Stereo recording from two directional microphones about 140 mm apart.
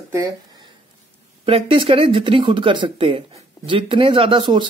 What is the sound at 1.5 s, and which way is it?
Speech, 40° right (ahead or behind).